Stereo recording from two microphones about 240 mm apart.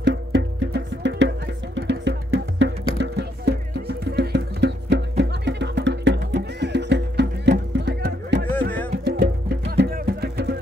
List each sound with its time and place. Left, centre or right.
0.0 s music: right